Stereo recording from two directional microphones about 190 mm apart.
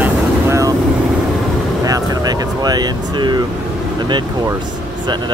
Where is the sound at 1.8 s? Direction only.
20° right (ahead or behind).